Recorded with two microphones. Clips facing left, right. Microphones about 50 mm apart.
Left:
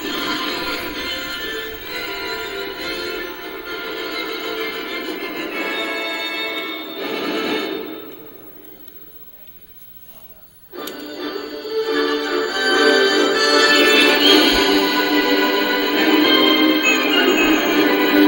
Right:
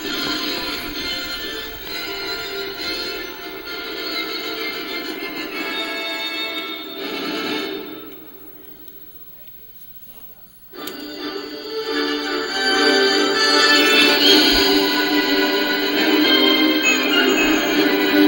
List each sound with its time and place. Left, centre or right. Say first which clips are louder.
0.0 s music: left 2 dB; centre
10.8 s music: left 2 dB; centre